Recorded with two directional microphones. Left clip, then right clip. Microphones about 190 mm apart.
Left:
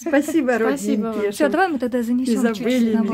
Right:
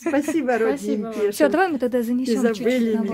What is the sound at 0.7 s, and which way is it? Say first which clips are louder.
Speech: left 2 dB; 35° left (ahead or behind).